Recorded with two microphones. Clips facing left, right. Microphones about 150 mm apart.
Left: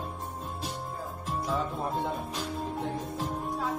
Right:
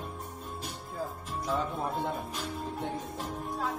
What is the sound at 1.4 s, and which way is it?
Music, centre (ahead or behind).